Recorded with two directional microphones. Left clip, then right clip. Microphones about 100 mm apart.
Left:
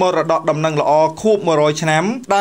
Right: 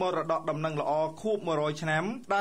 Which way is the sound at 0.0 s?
25° left (ahead or behind).